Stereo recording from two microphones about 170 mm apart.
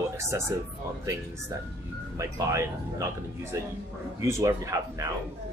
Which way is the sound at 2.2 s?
20° right (ahead or behind).